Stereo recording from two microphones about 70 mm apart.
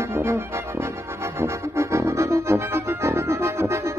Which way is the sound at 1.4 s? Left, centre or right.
Right.